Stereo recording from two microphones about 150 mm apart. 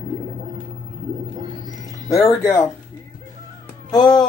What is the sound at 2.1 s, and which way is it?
Speech, 20° left (ahead or behind).